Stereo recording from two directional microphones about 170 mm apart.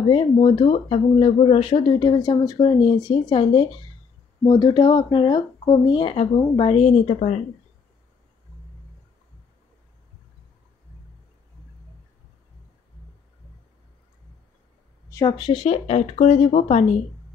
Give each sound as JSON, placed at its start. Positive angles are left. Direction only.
{"t": 0.1, "sound": "speech", "side_deg": 25}
{"t": 6.9, "sound": "speech", "side_deg": 45}
{"t": 15.0, "sound": "speech", "side_deg": 20}